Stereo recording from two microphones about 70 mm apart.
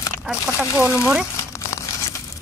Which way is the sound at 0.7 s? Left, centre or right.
Left.